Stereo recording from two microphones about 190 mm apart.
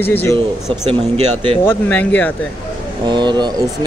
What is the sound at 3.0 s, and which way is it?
Speech, 25° right (ahead or behind).